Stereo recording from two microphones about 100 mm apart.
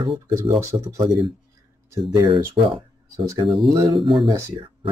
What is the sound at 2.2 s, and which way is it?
Speech, 60° right (ahead or behind).